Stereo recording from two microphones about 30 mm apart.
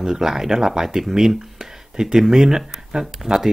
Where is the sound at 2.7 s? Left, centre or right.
Centre.